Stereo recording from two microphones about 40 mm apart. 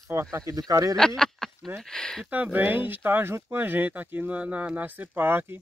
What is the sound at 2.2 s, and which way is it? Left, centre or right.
Speech, right.